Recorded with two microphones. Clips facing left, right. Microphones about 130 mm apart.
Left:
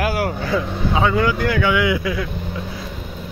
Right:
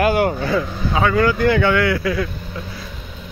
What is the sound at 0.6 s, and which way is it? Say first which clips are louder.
Speech: even; 20° left (ahead or behind).